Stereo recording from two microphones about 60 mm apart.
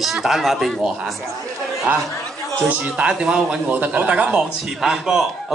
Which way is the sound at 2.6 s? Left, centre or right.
Centre.